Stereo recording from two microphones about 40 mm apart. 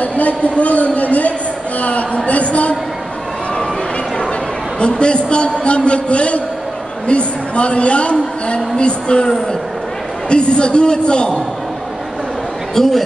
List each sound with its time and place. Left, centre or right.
0.0 s a sound: left
4.7 s a man's voice: left
10.3 s a man's voice: left
12.7 s a man's voice: centre